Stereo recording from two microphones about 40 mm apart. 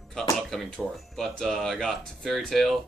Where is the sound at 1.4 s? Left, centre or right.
Centre.